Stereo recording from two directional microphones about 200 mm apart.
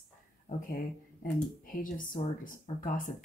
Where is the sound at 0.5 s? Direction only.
40° left (ahead or behind).